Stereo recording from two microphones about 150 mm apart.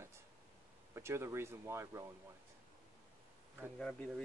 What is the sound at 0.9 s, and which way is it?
Speech, 15° right (ahead or behind).